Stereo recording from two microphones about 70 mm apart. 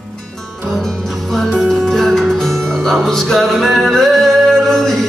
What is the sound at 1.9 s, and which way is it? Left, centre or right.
Music, centre.